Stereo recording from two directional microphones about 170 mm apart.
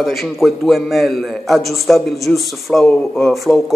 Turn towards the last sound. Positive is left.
turn(degrees=0)  # may be behind; listen again after turning